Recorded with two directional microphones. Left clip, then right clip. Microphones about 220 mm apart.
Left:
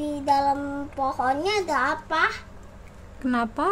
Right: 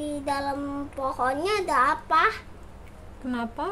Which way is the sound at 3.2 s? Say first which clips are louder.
Left 6 dB; 25° left (ahead or behind).